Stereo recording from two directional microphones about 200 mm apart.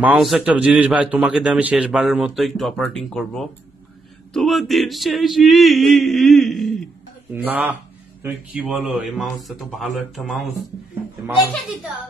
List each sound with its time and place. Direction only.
0.0 s a man's voice: 5° right (ahead or behind)